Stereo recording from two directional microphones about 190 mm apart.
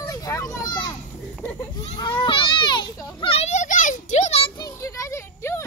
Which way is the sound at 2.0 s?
25° left (ahead or behind).